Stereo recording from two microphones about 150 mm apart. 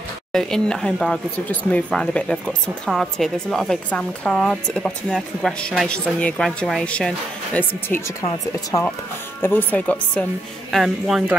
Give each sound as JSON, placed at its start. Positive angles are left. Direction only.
{"t": 0.3, "sound": "speech", "side_deg": 5}
{"t": 8.2, "sound": "speech", "side_deg": 25}
{"t": 9.4, "sound": "speech", "side_deg": 15}
{"t": 10.7, "sound": "speech", "side_deg": 0}